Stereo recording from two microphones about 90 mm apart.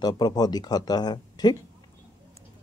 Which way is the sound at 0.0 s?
50° left (ahead or behind).